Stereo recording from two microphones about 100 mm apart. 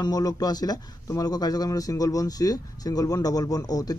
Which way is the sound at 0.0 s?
40° left (ahead or behind).